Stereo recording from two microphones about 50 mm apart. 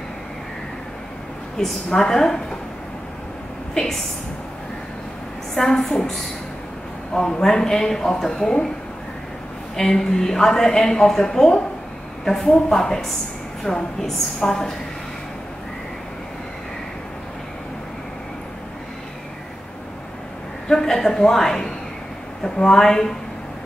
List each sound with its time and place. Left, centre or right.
1.6 s speech: centre
3.7 s speech: centre
5.5 s speech: centre
7.2 s speech: centre
9.8 s speech: centre
20.6 s speech: centre